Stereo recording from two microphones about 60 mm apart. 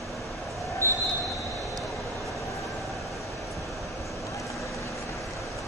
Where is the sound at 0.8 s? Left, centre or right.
Right.